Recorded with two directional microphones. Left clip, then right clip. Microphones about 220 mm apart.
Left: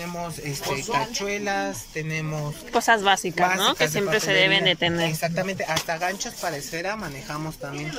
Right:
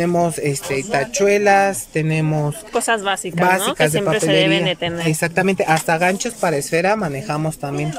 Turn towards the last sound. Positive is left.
turn(degrees=-45)  # may be behind; listen again after turning